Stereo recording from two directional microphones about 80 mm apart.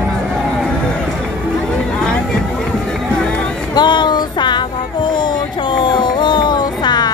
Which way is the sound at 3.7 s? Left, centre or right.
Left.